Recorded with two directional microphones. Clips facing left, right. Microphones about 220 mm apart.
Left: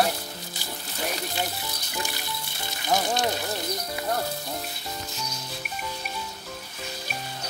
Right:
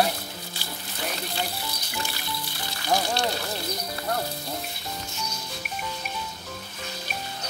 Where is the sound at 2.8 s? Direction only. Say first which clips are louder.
Even; 20° left (ahead or behind).